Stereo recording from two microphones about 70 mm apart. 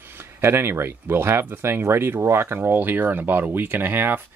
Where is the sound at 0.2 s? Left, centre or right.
Right.